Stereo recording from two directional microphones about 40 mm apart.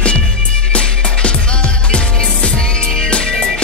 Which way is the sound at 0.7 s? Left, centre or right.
Left.